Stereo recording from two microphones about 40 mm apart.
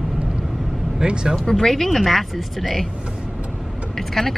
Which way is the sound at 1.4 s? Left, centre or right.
Centre.